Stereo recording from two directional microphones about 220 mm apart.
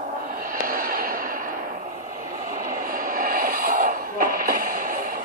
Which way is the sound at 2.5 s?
40° right (ahead or behind).